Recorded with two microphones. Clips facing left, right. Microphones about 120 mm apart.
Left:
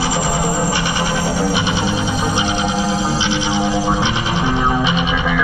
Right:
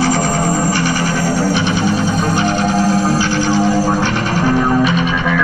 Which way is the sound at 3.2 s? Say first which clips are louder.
Right 4 dB; 20° left (ahead or behind).